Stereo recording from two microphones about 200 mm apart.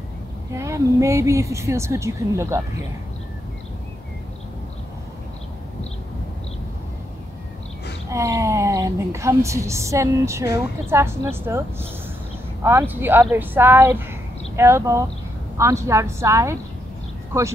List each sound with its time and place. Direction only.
0.5 s a woman's voice: 15° right (ahead or behind)
8.1 s a woman's voice: 15° right (ahead or behind)